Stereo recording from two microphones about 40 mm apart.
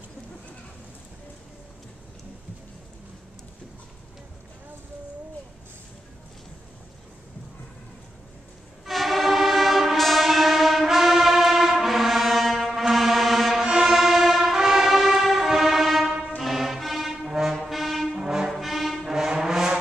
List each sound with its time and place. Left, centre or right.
8.8 s train: centre
13.6 s music: centre
14.5 s brass instrument: centre
16.3 s music: centre
18.2 s music: centre
18.5 s music: centre
19.0 s music: centre